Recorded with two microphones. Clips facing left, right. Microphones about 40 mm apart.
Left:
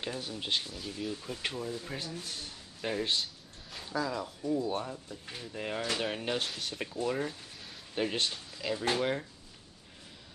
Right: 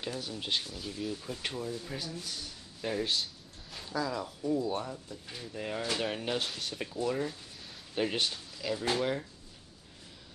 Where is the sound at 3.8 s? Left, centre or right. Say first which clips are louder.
Even; centre.